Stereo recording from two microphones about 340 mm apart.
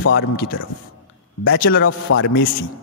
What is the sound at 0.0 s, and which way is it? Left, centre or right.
A man's voice, left.